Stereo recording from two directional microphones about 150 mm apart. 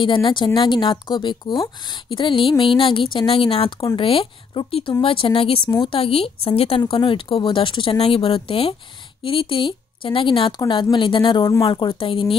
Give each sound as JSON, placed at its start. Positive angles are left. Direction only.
{"t": 0.0, "sound": "speech", "side_deg": 35}